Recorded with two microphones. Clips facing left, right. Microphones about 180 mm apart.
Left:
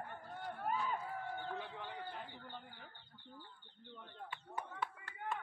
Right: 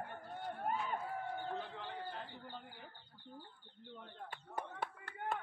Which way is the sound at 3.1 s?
30° right (ahead or behind).